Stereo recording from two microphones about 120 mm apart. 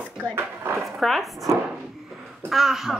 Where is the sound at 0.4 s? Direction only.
20° right (ahead or behind).